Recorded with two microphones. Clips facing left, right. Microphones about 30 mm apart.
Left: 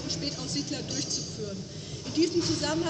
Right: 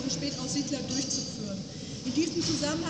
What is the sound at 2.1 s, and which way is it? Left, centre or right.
Speech, left.